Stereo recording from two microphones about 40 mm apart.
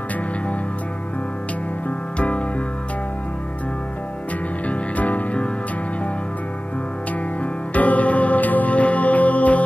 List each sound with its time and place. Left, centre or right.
2.1 s music: left
4.6 s music: left
7.7 s music: left